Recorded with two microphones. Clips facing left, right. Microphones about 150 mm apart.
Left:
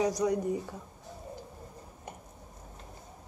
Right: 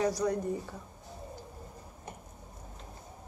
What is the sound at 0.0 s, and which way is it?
Speech, 15° left (ahead or behind).